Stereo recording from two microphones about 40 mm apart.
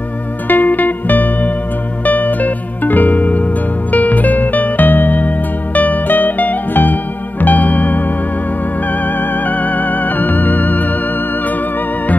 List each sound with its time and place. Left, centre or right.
0.5 s music: left